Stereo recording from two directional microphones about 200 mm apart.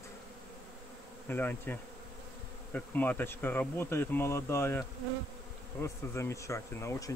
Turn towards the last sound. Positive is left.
turn(degrees=15)  # may be behind; listen again after turning